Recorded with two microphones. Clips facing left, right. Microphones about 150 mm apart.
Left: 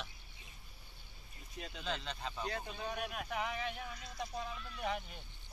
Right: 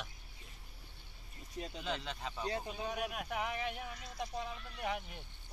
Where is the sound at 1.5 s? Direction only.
35° right (ahead or behind).